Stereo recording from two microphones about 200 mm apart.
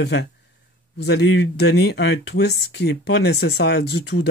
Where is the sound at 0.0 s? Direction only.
60° left (ahead or behind).